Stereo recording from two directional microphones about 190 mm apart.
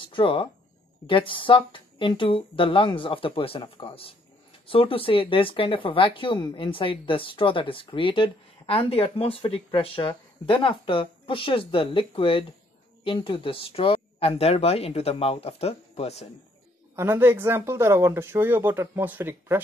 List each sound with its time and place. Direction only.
0.1 s speech: 25° left (ahead or behind)
16.9 s speech: 10° right (ahead or behind)